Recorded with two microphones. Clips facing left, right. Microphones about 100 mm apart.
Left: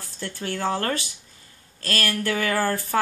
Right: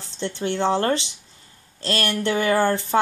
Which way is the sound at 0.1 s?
25° right (ahead or behind).